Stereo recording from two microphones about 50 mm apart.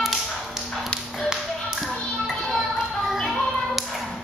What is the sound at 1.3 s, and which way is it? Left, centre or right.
Tap, centre.